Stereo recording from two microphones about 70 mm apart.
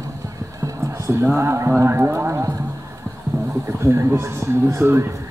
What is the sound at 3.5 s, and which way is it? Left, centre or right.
Speech, right.